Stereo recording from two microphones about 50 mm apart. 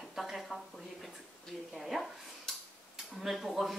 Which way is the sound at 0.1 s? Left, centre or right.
Centre.